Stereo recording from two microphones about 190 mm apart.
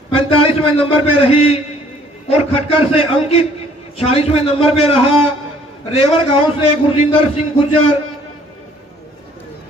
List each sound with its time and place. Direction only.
0.1 s a man's voice: 30° left (ahead or behind)